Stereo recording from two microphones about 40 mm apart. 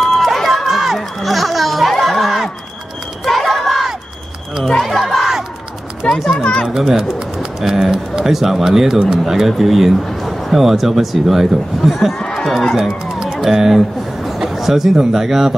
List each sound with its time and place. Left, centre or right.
0.0 s crowd: centre
0.8 s a sound: centre
4.8 s crowd: centre
6.0 s a sound: centre
6.7 s a man's voice: centre
12.2 s run: centre
12.7 s speech: centre